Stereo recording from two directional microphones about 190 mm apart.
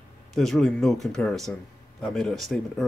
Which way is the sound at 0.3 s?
Centre (ahead or behind).